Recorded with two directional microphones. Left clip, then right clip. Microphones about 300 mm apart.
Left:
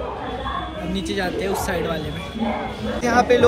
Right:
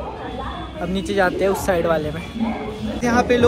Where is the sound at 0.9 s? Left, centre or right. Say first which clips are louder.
Right 8 dB; centre.